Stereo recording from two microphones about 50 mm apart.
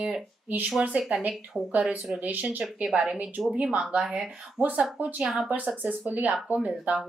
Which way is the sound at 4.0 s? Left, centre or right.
Centre.